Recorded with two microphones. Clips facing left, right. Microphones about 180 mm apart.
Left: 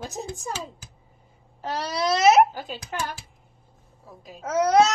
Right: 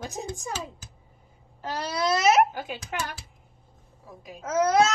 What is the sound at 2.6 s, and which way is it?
Speech, 15° right (ahead or behind).